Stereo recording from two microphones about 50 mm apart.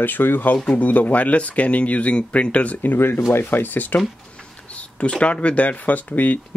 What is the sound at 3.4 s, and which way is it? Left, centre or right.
Speech, left.